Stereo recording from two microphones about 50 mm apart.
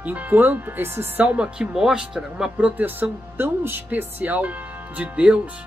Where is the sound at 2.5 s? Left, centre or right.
Right.